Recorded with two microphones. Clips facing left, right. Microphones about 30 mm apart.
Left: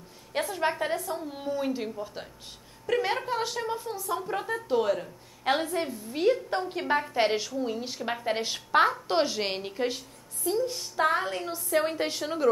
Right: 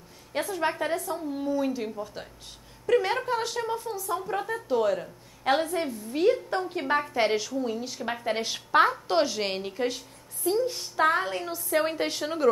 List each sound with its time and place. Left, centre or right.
0.3 s a woman's voice: centre
1.3 s a woman's voice: left
1.6 s a woman's voice: centre
10.4 s a woman's voice: centre